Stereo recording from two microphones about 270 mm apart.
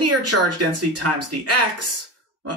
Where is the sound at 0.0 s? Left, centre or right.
Right.